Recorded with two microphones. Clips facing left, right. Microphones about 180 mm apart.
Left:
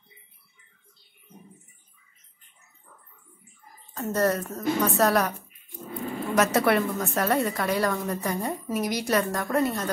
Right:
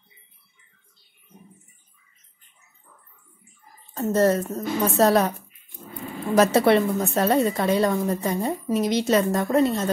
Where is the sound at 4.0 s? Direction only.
25° right (ahead or behind).